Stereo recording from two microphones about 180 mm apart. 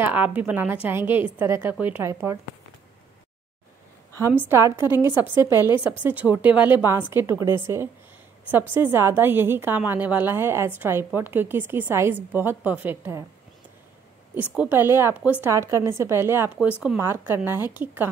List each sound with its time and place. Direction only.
0.0 s a woman's voice: 10° right (ahead or behind)
4.3 s a woman's voice: 10° right (ahead or behind)
5.5 s a woman's voice: 20° left (ahead or behind)
6.0 s a woman's voice: 10° right (ahead or behind)
14.3 s a woman's voice: 5° right (ahead or behind)